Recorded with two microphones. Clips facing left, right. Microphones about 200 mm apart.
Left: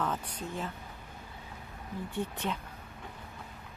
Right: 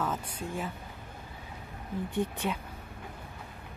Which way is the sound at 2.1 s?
10° right (ahead or behind).